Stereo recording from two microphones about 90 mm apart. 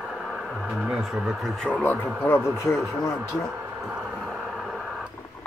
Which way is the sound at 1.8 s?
25° left (ahead or behind).